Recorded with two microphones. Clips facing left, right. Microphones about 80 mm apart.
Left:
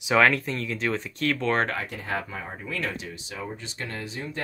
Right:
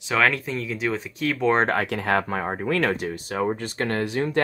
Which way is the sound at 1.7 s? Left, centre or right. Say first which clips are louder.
Right 8 dB; right.